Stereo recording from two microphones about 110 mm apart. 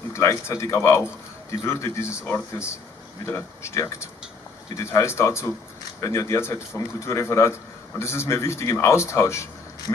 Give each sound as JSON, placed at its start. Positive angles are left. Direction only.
{"t": 0.1, "sound": "speech", "side_deg": 25}